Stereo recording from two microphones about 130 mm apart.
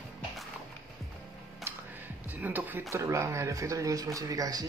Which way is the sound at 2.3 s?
15° right (ahead or behind).